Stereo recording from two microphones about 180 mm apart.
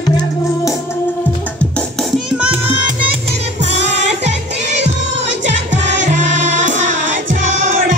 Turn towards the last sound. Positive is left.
turn(degrees=-45)  # may be behind; listen again after turning